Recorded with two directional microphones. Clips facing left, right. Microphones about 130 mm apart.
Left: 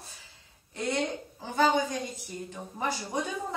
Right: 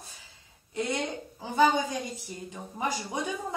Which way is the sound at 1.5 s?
15° right (ahead or behind).